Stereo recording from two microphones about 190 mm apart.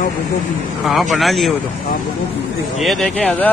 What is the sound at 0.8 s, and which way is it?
Speech, centre (ahead or behind).